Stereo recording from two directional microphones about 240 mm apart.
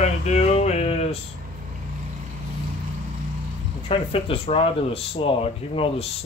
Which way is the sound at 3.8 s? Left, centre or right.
Left.